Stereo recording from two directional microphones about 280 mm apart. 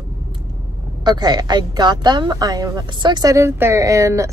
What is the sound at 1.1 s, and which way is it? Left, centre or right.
A woman's voice, centre.